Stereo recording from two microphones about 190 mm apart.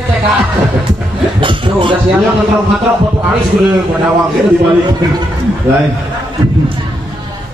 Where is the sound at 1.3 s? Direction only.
25° right (ahead or behind).